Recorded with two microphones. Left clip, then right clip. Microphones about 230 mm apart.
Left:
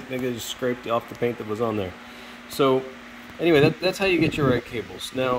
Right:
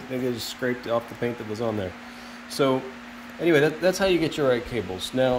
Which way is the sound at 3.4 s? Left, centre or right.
Centre.